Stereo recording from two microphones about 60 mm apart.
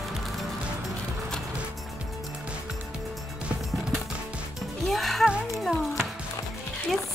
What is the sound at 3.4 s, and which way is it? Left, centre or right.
Music, centre.